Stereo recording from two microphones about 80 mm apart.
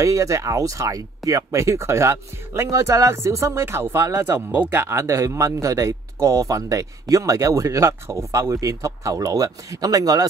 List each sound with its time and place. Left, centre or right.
0.0 s speech: right